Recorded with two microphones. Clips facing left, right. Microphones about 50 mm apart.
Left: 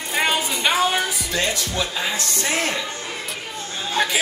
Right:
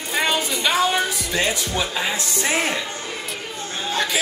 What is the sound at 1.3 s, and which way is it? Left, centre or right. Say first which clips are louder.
Speech: right 1 dB; centre.